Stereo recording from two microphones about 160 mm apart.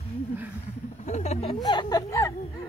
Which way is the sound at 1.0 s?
45° left (ahead or behind).